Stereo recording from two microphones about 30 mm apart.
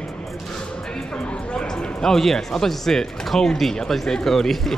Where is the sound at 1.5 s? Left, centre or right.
Left.